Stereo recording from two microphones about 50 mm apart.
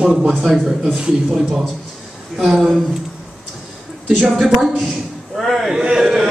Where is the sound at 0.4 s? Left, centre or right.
Centre.